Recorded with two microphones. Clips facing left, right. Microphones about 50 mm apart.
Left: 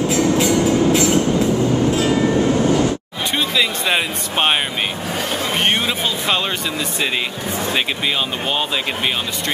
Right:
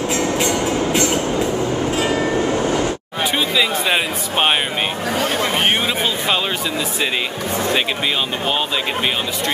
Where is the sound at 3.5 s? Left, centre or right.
Centre.